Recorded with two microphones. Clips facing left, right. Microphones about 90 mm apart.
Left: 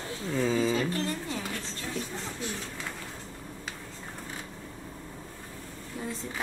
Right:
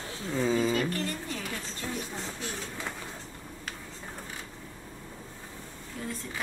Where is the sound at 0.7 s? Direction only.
20° left (ahead or behind).